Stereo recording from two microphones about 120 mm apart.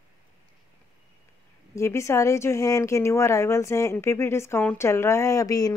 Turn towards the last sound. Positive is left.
turn(degrees=30)  # may be behind; listen again after turning